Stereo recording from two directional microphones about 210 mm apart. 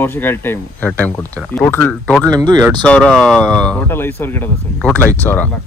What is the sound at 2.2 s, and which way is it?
Speech, 20° right (ahead or behind).